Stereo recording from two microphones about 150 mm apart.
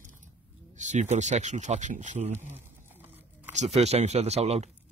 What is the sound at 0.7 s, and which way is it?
Speech, 55° right (ahead or behind).